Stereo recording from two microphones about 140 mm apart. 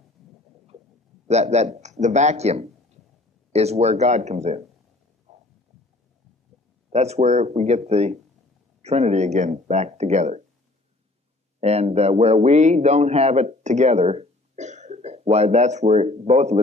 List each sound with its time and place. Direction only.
1.2 s speech: 50° right (ahead or behind)
5.3 s stomach rumble: 60° right (ahead or behind)
6.9 s speech: 50° right (ahead or behind)
11.6 s a man's voice: 50° right (ahead or behind)